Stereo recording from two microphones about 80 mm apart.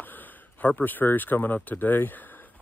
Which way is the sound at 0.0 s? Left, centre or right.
Left.